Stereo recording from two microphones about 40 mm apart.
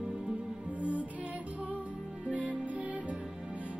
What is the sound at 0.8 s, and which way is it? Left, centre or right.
Music, right.